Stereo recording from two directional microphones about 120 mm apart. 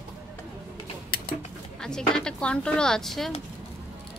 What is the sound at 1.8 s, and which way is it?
Speech, 5° left (ahead or behind).